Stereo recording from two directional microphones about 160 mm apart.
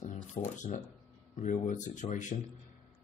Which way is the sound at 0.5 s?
50° left (ahead or behind).